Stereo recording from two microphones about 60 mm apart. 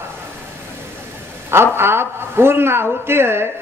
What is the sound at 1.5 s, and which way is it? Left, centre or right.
A man's voice, right.